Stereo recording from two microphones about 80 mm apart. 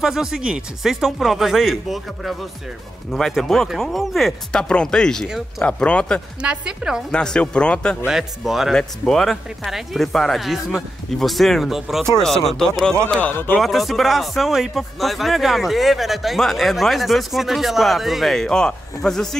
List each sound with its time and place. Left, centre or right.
0.0 s speech: centre
6.4 s a woman's voice: centre
7.1 s speech: centre
8.1 s speech: centre
8.7 s speech: centre
13.1 s a man's voice: left
13.6 s speech: centre